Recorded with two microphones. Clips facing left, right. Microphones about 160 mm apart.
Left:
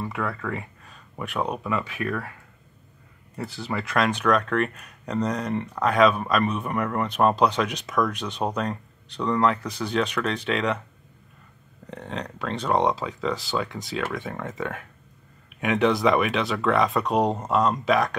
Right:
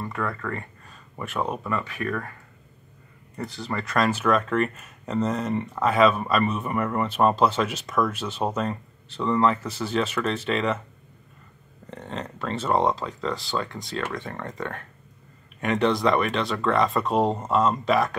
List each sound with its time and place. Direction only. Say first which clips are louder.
0.0 s speech: even; 5° left (ahead or behind)
3.3 s speech: left 1 dB; 5° left (ahead or behind)
11.8 s speech: left 1 dB; centre (ahead or behind)